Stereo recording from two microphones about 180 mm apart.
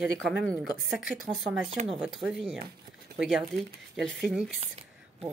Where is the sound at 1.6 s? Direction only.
35° right (ahead or behind).